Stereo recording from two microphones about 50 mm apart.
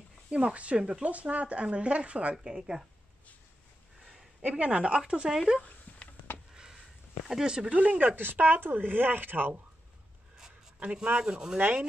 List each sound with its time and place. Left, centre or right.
0.3 s speech: right
2.3 s a woman's voice: centre
4.4 s speech: right
5.9 s a sound: left
6.5 s a sound: centre
7.2 s a woman's voice: centre
7.7 s speech: right
8.2 s speech: right
10.8 s a woman's voice: right